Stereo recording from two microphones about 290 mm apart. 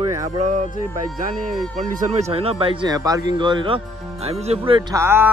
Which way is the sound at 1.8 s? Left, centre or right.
Right.